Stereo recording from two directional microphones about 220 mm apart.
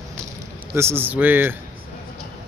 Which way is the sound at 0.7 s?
10° right (ahead or behind).